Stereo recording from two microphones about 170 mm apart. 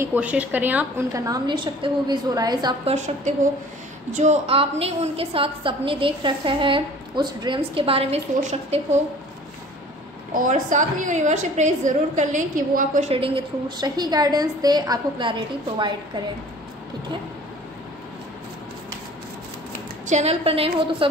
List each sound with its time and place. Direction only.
0.0 s a woman's voice: 10° right (ahead or behind)
2.8 s a woman's voice: 40° right (ahead or behind)
10.3 s a woman's voice: 50° right (ahead or behind)
13.1 s a woman's voice: 30° right (ahead or behind)
20.1 s a woman's voice: 40° right (ahead or behind)